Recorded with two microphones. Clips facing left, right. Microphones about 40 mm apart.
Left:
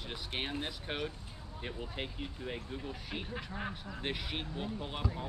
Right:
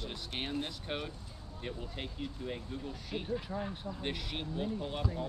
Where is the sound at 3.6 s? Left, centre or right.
Left.